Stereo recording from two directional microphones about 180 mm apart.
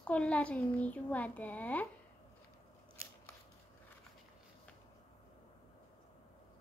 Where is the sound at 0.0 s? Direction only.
5° left (ahead or behind).